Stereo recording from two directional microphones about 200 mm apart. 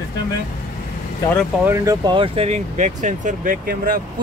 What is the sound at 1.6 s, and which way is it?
Speech, 15° right (ahead or behind).